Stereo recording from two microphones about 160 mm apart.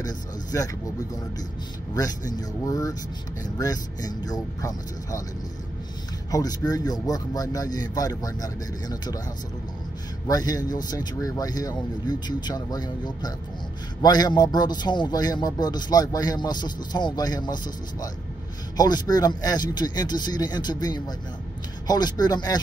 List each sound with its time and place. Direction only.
0.0 s speech: 25° left (ahead or behind)
2.0 s speech: 25° left (ahead or behind)
6.3 s speech: 25° left (ahead or behind)
10.2 s speech: 25° left (ahead or behind)
18.8 s speech: 25° left (ahead or behind)